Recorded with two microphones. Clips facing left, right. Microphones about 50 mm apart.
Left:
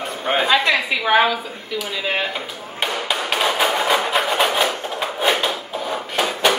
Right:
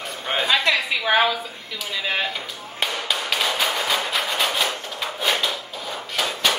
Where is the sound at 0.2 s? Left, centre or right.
Centre.